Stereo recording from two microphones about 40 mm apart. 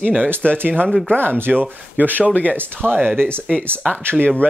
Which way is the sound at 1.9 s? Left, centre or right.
Right.